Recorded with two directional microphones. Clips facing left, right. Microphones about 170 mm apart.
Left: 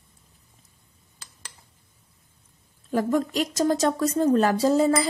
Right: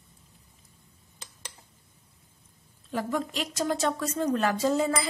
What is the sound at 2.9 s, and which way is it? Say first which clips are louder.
A woman's voice: left 7 dB; 45° left (ahead or behind).